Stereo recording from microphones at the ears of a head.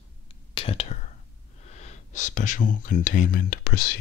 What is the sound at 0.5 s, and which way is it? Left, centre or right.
Whispering, left.